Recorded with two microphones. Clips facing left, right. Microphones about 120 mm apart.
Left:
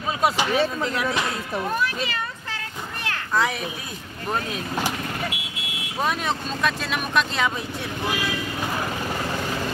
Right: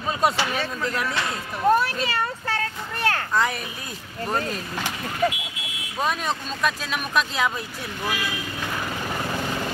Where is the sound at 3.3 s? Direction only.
Centre (ahead or behind).